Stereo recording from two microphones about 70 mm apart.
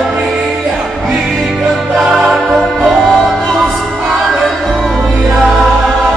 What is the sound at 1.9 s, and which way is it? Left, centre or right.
Music, centre.